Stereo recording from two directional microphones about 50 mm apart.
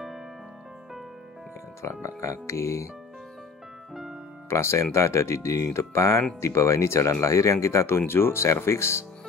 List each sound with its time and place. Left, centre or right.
1.8 s speech: left
3.9 s music: centre
4.5 s speech: left
6.4 s speech: left
8.1 s speech: left